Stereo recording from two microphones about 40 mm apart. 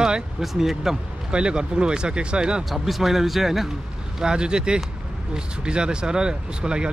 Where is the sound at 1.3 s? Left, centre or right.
Right.